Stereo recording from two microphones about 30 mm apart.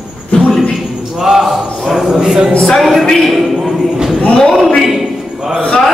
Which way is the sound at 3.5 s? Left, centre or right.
Centre.